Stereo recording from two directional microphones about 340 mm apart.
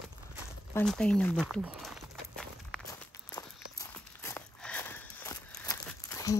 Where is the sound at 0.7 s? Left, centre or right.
Centre.